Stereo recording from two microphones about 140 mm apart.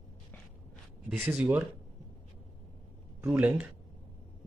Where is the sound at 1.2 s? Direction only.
10° right (ahead or behind).